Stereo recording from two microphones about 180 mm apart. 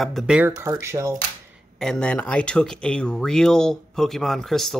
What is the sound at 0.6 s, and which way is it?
Speech, 15° right (ahead or behind).